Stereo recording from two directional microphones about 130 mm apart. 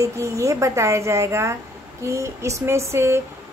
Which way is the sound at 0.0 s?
25° right (ahead or behind).